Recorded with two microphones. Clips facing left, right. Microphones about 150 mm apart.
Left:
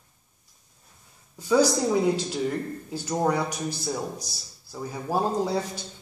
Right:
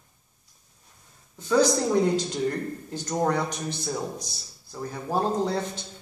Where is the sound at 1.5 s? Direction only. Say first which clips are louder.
Even; 5° left (ahead or behind).